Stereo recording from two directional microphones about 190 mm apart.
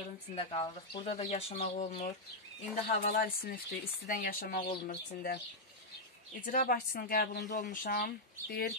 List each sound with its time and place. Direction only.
0.4 s a woman's voice: 25° left (ahead or behind); by 5.4 s 50° left (ahead or behind)
6.4 s a woman's voice: 50° left (ahead or behind)
7.7 s a woman's voice: 45° left (ahead or behind)